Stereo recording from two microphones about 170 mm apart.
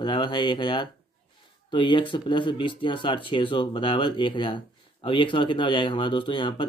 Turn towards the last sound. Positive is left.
turn(degrees=30)  # may be behind; listen again after turning